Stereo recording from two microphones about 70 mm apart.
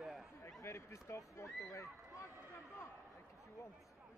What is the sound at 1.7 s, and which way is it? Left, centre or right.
Run, left.